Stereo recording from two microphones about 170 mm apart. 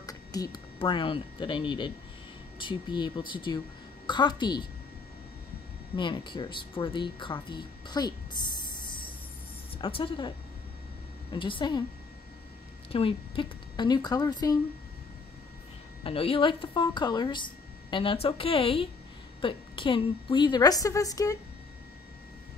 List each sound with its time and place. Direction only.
0.0 s a woman's voice: 20° left (ahead or behind)
5.9 s a woman's voice: 30° left (ahead or behind)
12.9 s a woman's voice: 30° left (ahead or behind)
16.0 s a woman's voice: 30° left (ahead or behind)